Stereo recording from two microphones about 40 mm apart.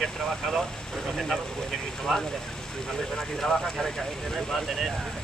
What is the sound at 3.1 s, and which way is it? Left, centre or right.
Speech, centre.